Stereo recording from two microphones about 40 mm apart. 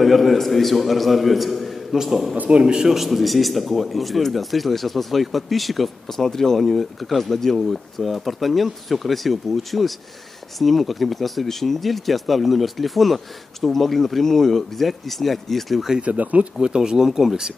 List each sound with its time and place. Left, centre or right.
0.0 s a man's voice: centre
2.3 s speech: right
2.6 s a man's voice: centre
2.9 s speech: centre
6.0 s speech: centre
16.0 s speech: right
16.5 s speech: centre